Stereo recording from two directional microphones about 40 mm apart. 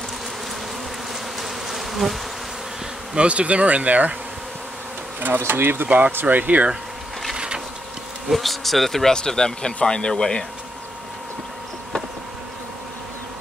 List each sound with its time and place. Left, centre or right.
1.4 s bee: centre
3.2 s speech: right
5.2 s bee: right
5.9 s speech: right
6.2 s speech: right
7.3 s boat: right
8.3 s speech: centre
9.1 s speech: centre